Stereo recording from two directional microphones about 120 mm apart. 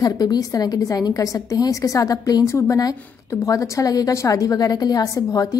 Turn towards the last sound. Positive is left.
turn(degrees=30)  # may be behind; listen again after turning